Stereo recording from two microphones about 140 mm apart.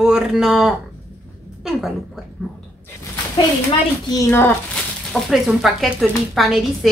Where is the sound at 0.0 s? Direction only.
5° right (ahead or behind).